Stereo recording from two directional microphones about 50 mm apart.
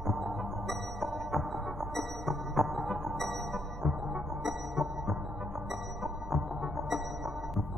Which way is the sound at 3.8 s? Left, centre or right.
Right.